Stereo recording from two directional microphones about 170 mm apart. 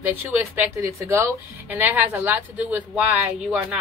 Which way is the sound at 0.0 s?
10° right (ahead or behind).